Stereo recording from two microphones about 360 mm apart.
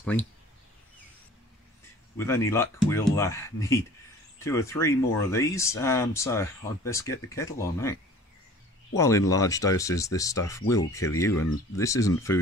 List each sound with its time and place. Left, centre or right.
0.0 s speech: centre
2.1 s speech: centre
8.9 s speech: centre